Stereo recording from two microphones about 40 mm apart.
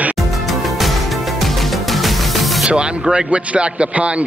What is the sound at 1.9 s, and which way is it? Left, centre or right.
Music, centre.